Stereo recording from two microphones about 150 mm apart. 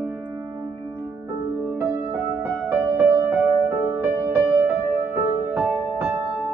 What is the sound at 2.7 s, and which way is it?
Music, 10° right (ahead or behind).